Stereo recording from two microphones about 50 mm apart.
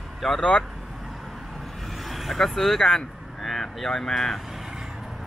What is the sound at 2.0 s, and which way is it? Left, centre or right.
Speech, centre.